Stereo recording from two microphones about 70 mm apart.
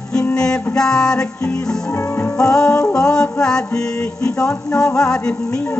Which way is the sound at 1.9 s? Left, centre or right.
Left.